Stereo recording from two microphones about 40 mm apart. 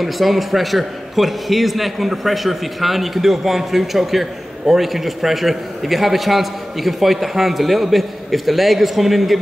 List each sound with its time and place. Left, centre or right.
0.0 s a man's voice: centre